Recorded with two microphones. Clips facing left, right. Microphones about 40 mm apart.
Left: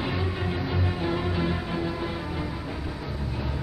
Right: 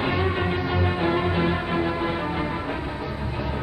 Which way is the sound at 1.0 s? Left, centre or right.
Right.